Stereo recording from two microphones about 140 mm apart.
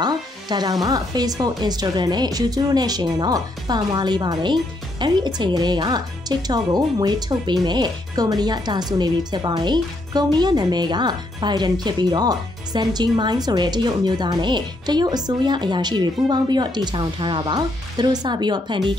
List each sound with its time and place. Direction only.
0.0 s a woman's voice: 30° right (ahead or behind)